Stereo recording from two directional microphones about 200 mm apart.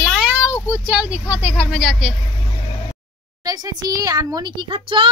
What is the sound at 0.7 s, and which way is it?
Vehicle, 10° right (ahead or behind).